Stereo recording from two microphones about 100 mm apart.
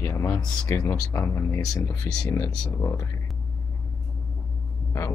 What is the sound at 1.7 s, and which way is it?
Speech, 35° left (ahead or behind).